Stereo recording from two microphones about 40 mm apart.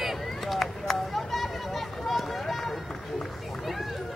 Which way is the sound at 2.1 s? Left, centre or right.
Centre.